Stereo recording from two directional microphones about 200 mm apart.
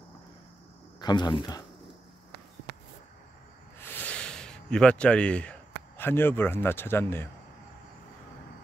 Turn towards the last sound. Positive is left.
turn(degrees=10)  # may be behind; listen again after turning